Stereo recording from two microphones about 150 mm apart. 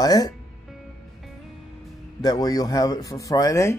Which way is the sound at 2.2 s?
25° left (ahead or behind).